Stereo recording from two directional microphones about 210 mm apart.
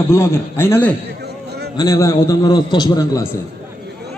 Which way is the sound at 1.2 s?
50° right (ahead or behind).